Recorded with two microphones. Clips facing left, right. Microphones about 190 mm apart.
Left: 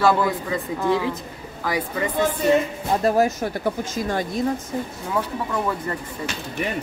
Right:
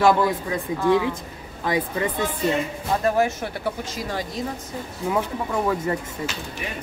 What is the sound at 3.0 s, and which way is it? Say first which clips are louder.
Speech: left 2 dB; 40° left (ahead or behind).